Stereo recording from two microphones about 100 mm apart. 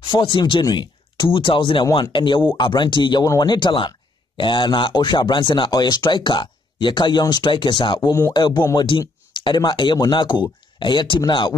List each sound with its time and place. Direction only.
0.0 s speech: 55° left (ahead or behind)